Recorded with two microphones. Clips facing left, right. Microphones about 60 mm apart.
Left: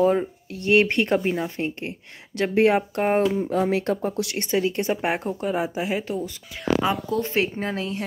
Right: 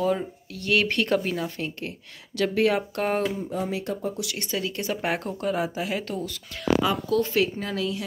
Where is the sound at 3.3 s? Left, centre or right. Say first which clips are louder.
Left 7 dB; left.